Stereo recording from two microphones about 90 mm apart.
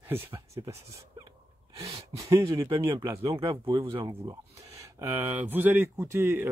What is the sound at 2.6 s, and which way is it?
Speech, 70° right (ahead or behind).